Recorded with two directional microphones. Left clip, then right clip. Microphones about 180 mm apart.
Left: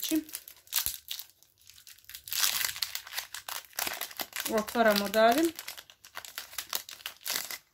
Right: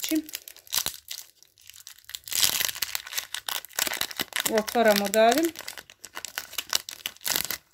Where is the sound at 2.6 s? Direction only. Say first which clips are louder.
Right 4 dB; 25° right (ahead or behind).